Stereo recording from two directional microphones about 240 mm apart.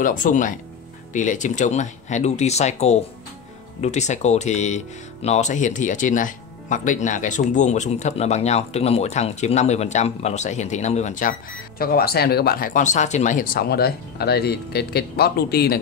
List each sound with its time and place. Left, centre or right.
0.0 s speech: left